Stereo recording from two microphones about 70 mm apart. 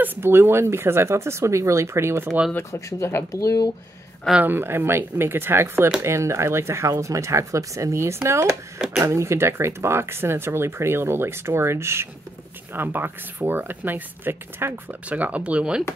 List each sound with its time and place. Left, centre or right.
0.0 s speech: right
2.7 s speech: left
3.3 s speech: left
4.4 s speech: right
15.0 s speech: right